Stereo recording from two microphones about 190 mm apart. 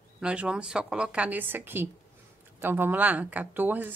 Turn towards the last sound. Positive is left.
turn(degrees=-10)  # may be behind; listen again after turning